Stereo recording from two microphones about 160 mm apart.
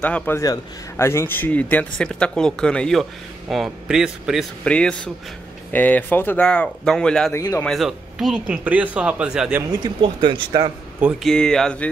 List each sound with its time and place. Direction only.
0.0 s speech: 10° left (ahead or behind)
7.3 s speech: 15° left (ahead or behind)
7.6 s speech: centre (ahead or behind)
9.6 s speech: 25° right (ahead or behind)
11.2 s speech: 5° left (ahead or behind)